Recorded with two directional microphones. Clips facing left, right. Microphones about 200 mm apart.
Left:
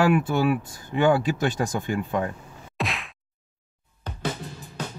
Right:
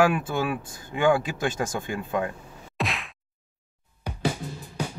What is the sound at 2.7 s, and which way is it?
Whack, centre (ahead or behind).